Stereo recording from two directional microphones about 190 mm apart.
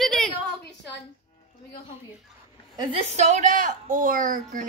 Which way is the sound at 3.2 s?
40° right (ahead or behind).